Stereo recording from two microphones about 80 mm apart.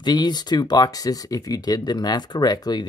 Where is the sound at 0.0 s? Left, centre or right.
Left.